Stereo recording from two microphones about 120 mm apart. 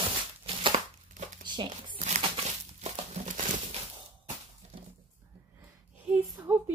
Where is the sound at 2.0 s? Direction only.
65° right (ahead or behind).